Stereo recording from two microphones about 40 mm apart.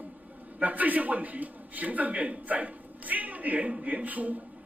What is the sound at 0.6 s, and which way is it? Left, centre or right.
Speech, right.